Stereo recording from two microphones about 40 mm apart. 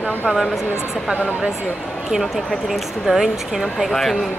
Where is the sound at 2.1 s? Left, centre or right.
Centre.